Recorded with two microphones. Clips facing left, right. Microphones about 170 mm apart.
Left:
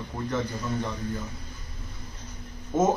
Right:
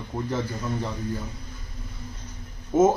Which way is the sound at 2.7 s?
10° right (ahead or behind).